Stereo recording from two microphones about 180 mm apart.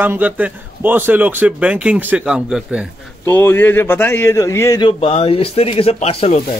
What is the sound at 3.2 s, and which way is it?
Speech, 15° left (ahead or behind).